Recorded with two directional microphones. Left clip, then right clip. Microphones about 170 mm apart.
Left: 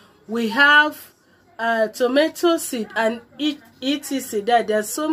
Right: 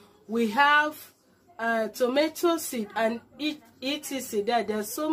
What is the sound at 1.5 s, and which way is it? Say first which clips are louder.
A woman's voice: left 7 dB; 25° left (ahead or behind).